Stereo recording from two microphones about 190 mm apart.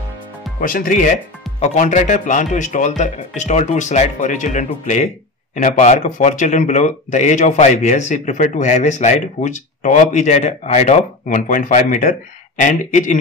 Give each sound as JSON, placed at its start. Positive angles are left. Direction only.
{"t": 0.6, "sound": "speech", "side_deg": 45}